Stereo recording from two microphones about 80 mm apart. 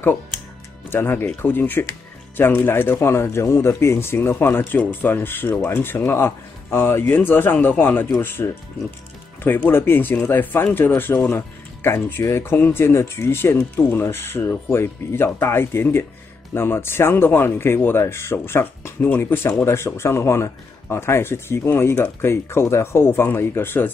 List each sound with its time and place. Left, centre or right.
0.9 s speech: left